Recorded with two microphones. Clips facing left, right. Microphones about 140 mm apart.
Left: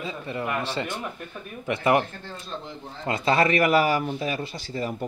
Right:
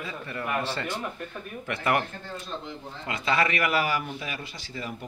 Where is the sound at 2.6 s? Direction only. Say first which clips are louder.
Left 5 dB; 35° left (ahead or behind).